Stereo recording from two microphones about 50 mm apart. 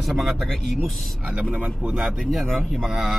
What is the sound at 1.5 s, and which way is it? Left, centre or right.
Speech, right.